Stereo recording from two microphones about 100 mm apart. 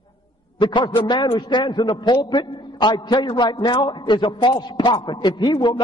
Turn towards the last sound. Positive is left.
turn(degrees=50)  # may be behind; listen again after turning